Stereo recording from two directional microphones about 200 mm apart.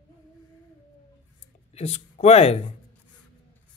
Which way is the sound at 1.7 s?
30° left (ahead or behind).